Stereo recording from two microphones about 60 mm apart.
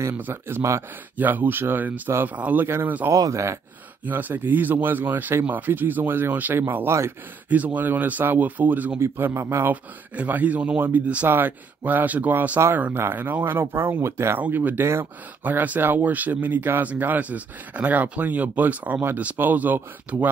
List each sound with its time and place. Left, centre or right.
0.3 s a man's voice: right
1.1 s speech: right
2.6 s speech: right
3.1 s a man's voice: right
4.0 s speech: right
9.0 s a man's voice: right
9.7 s a man's voice: right
14.4 s speech: right